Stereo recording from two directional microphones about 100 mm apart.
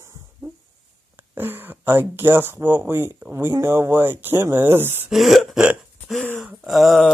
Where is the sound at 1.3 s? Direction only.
20° right (ahead or behind).